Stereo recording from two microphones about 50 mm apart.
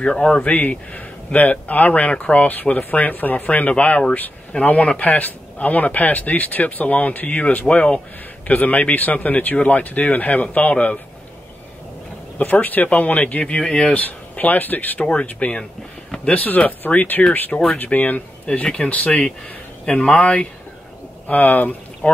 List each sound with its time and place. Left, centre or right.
0.0 s a man's voice: centre
0.5 s speech: left
12.4 s speech: left
14.0 s speech: left
17.5 s a man's voice: centre
17.7 s speech: left